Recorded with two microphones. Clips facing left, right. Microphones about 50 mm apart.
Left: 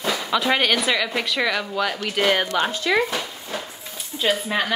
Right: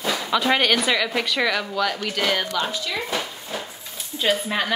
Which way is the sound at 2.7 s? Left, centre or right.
Left.